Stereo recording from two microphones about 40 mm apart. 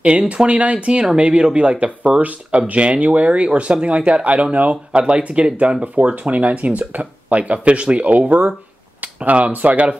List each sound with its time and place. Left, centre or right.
0.5 s speech: right
9.0 s a sound: right
9.5 s speech: right